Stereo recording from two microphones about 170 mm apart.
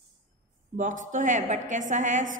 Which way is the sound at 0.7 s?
50° right (ahead or behind).